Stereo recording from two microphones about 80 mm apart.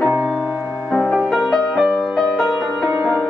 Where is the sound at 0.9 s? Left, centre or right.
Centre.